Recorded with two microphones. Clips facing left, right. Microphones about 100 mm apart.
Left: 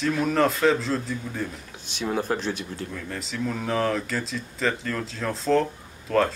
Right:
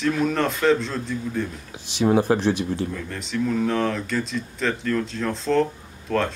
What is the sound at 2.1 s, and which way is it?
Speech, 10° right (ahead or behind).